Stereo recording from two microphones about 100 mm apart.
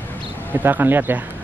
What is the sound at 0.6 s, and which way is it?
Speech, 20° right (ahead or behind).